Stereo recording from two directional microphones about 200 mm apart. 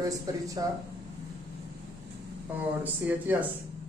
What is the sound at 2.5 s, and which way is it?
Speech, 10° right (ahead or behind).